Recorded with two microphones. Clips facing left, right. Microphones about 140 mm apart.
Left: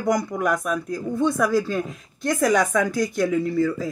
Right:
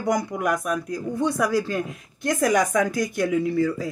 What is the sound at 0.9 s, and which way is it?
Speech, 15° right (ahead or behind).